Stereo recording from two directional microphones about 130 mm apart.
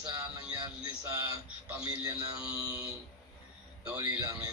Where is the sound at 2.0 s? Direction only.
30° right (ahead or behind).